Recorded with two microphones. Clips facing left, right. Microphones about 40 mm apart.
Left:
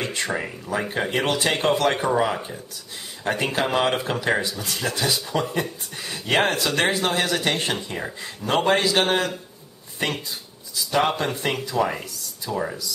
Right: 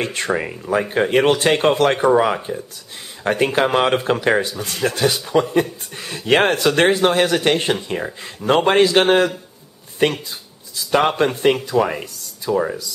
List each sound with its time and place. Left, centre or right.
0.0 s speech: right; by 2.6 s centre
3.3 s speech: right
10.9 s speech: right
12.4 s speech: centre